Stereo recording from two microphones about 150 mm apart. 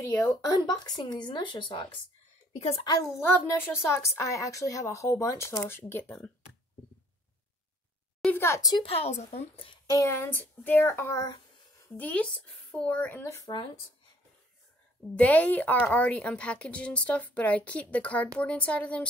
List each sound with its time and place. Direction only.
0.1 s speech: 20° left (ahead or behind)
8.2 s a woman's voice: 15° left (ahead or behind)
8.8 s a woman's voice: 45° left (ahead or behind)
9.8 s speech: 20° left (ahead or behind)
15.1 s speech: 10° left (ahead or behind)